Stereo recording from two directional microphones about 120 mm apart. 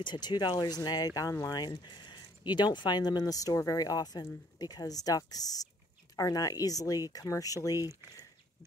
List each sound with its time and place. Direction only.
0.0 s speech: 35° left (ahead or behind)